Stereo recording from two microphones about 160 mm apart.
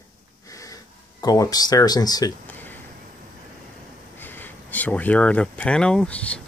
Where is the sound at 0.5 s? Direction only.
20° left (ahead or behind).